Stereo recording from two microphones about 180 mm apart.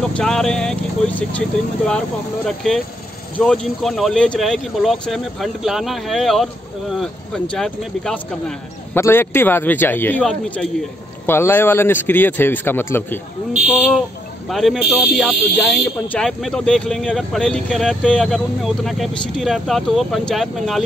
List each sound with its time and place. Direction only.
0.1 s a man's voice: 5° left (ahead or behind)
13.7 s speech: 5° right (ahead or behind)